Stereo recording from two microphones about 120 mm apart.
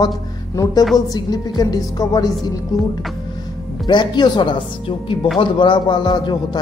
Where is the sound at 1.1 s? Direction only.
35° left (ahead or behind).